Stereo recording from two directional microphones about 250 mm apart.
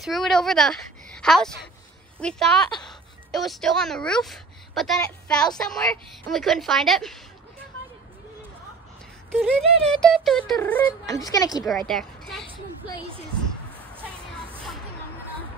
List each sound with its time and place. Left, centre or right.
0.0 s a woman's voice: centre
9.3 s a woman's voice: centre
11.9 s a child's voice: centre
14.1 s music: centre